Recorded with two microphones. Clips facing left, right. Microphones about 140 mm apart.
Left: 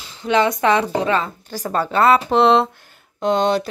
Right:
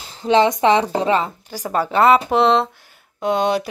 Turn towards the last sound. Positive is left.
turn(degrees=-10)  # may be behind; listen again after turning